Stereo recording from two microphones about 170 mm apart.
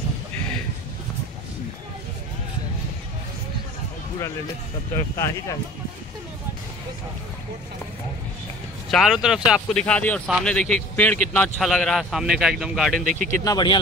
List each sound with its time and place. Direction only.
4.9 s speech: 15° left (ahead or behind)
8.9 s a man's voice: 5° right (ahead or behind)
13.0 s speech: 50° right (ahead or behind)
13.3 s speech: 20° left (ahead or behind)